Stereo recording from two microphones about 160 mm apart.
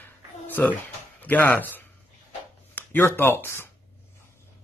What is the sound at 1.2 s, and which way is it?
Speech, 10° left (ahead or behind).